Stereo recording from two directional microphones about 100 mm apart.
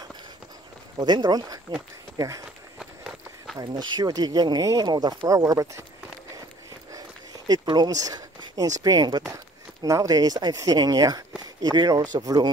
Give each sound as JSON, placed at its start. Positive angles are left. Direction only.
{"t": 0.9, "sound": "speech", "side_deg": -45}
{"t": 2.1, "sound": "speech", "side_deg": -35}
{"t": 2.8, "sound": "run", "side_deg": 0}
{"t": 3.5, "sound": "speech", "side_deg": -45}
{"t": 7.4, "sound": "speech", "side_deg": -45}